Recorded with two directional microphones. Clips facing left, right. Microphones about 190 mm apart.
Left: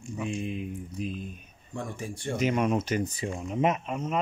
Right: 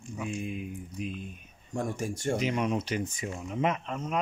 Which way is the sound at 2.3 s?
50° left (ahead or behind).